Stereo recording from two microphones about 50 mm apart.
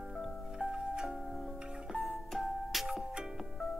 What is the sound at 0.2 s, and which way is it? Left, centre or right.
Music, centre.